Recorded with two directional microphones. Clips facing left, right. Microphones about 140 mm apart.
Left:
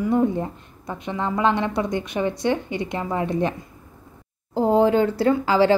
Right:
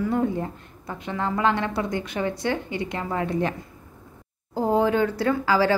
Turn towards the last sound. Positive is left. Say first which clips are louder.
# left 3 dB
turn(degrees=25)  # may be behind; listen again after turning